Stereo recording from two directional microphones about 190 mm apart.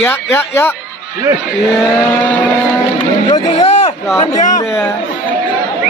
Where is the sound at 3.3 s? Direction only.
35° left (ahead or behind).